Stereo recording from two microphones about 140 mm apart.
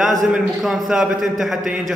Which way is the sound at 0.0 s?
Centre (ahead or behind).